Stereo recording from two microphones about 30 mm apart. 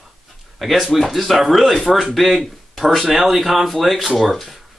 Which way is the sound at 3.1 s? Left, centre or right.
Centre.